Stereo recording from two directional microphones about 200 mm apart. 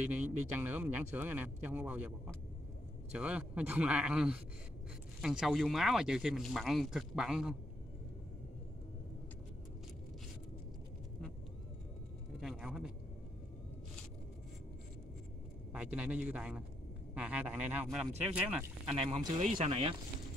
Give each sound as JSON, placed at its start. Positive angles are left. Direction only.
{"t": 0.0, "sound": "speech", "side_deg": -10}
{"t": 12.4, "sound": "speech", "side_deg": 0}
{"t": 15.7, "sound": "speech", "side_deg": -5}
{"t": 18.9, "sound": "speech", "side_deg": -25}